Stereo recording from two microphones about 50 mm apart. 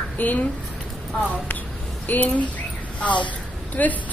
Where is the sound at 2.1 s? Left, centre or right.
Left.